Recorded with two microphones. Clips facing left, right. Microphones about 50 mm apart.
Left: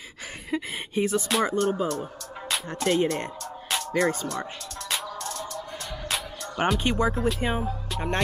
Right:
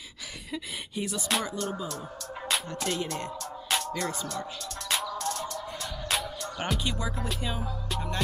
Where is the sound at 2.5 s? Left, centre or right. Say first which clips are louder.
Even; centre.